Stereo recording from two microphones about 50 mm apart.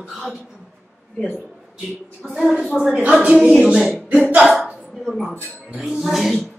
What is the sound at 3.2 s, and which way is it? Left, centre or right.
Speech, centre.